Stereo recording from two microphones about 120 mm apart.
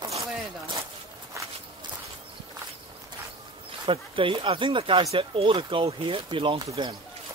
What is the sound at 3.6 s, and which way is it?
Speech, 45° right (ahead or behind).